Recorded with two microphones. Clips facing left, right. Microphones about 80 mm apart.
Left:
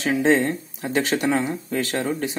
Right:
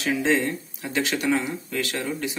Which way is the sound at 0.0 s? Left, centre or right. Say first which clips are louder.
Left 4 dB; left.